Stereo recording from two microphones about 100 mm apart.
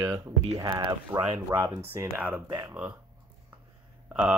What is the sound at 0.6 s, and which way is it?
Speech, 55° right (ahead or behind).